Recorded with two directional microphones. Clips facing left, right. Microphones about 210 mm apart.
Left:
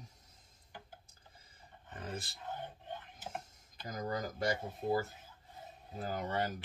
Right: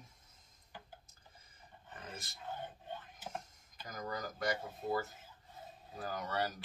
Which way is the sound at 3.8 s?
30° left (ahead or behind).